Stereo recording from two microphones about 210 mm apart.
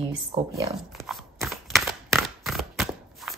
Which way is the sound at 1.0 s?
Centre (ahead or behind).